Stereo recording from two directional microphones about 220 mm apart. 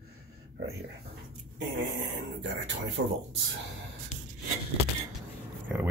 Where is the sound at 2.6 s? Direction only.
60° right (ahead or behind).